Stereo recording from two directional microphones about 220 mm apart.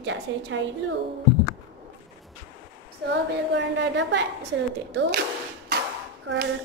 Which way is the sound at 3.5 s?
50° right (ahead or behind).